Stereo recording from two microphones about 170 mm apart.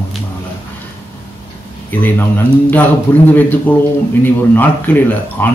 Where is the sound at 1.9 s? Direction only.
10° left (ahead or behind).